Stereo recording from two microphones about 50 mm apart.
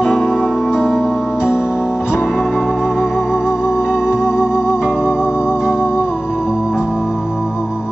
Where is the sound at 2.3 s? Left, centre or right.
Centre.